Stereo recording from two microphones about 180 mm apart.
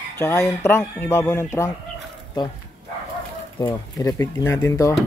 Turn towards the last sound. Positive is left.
turn(degrees=20)  # may be behind; listen again after turning